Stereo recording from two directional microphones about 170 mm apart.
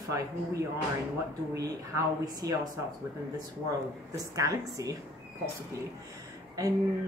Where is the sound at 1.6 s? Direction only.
20° right (ahead or behind).